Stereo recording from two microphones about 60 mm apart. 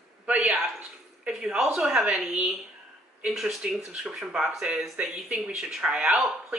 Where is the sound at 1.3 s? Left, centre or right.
Centre.